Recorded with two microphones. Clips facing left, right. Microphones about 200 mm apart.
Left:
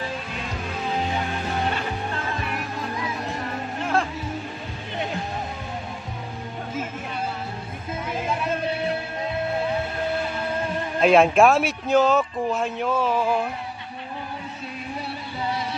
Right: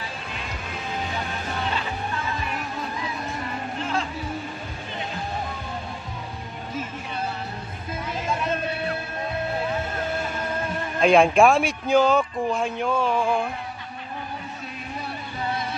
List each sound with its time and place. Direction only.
3.8 s music: 55° left (ahead or behind)
11.0 s a man's voice: 5° left (ahead or behind)